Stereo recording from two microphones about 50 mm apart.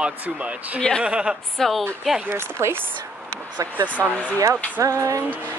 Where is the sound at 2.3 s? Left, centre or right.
Right.